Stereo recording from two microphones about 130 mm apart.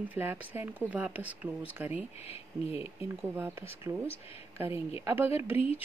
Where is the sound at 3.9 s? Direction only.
15° right (ahead or behind).